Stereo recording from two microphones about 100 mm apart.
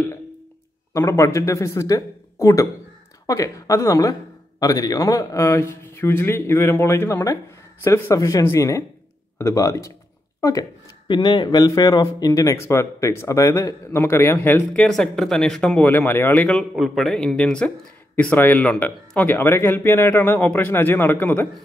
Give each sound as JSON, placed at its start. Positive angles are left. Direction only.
{"t": 0.9, "sound": "speech", "side_deg": 30}
{"t": 11.1, "sound": "speech", "side_deg": 45}
{"t": 14.7, "sound": "speech", "side_deg": 5}
{"t": 15.9, "sound": "speech", "side_deg": 20}
{"t": 16.7, "sound": "speech", "side_deg": 0}